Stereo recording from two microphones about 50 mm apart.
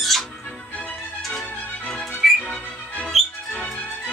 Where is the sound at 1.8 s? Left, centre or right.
Centre.